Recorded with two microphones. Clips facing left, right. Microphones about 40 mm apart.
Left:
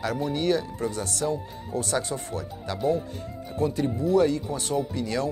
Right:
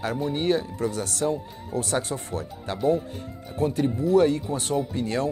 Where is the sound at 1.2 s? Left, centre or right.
Right.